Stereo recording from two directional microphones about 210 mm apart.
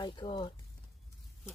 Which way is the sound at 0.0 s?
20° left (ahead or behind).